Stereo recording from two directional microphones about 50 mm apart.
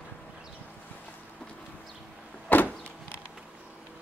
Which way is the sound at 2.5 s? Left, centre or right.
Left.